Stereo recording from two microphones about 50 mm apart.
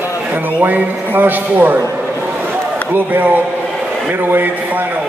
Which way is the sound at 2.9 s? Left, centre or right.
Right.